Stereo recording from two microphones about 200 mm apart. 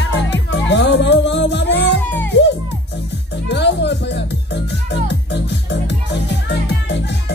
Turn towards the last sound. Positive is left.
turn(degrees=60)  # may be behind; listen again after turning